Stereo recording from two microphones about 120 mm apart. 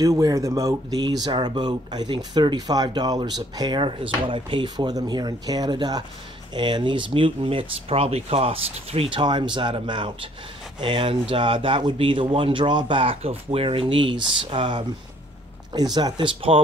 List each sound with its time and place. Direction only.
0.0 s speech: 30° right (ahead or behind); by 16.6 s 45° right (ahead or behind)